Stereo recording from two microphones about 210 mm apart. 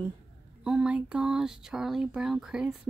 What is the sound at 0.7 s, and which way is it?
Speech, 5° right (ahead or behind).